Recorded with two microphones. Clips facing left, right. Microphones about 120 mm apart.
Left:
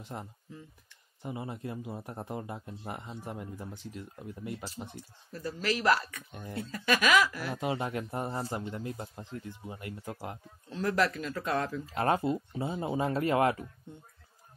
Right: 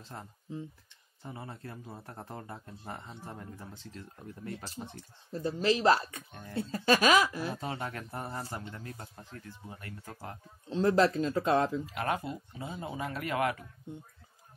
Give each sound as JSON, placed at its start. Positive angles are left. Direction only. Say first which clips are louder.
{"t": 0.0, "sound": "speech", "louder": "left 4 dB", "side_deg": 15}
{"t": 5.3, "sound": "speech", "louder": "right 4 dB", "side_deg": -25}
{"t": 7.5, "sound": "speech", "louder": "left 5 dB", "side_deg": 20}
{"t": 10.7, "sound": "speech", "louder": "right 4 dB", "side_deg": -25}
{"t": 11.8, "sound": "speech", "louder": "left 5 dB", "side_deg": 30}